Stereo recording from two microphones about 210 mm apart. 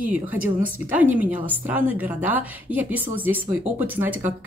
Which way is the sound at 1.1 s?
10° right (ahead or behind).